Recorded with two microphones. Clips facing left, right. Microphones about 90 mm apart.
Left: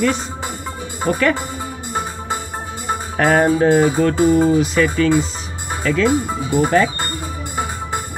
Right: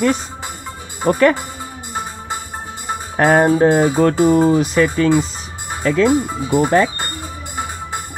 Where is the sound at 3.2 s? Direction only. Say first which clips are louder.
Right 2 dB; 20° right (ahead or behind).